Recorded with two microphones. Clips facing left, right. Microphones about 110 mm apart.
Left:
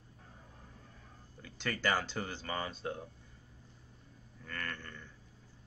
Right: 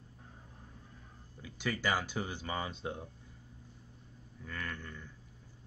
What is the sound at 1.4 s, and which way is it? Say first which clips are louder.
Speech: even; 10° right (ahead or behind).